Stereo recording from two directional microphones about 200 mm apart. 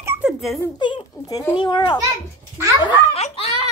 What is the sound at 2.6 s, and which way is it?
Speech, 15° right (ahead or behind).